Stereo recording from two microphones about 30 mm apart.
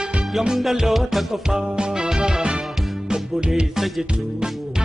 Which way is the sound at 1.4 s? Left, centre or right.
Right.